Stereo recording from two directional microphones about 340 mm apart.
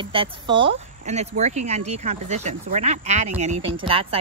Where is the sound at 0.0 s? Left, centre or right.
Centre.